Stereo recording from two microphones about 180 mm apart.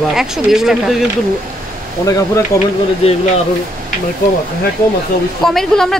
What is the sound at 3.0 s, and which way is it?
Speech, 35° left (ahead or behind).